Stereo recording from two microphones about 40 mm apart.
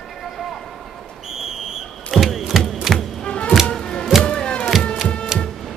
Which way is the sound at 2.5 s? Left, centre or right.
Centre.